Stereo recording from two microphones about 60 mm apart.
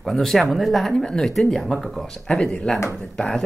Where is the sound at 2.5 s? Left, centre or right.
Centre.